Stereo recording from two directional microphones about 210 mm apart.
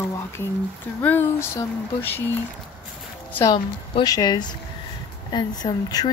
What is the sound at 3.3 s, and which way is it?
Speech, 15° left (ahead or behind).